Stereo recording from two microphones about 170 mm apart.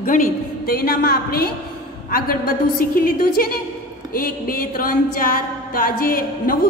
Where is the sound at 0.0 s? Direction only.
55° left (ahead or behind).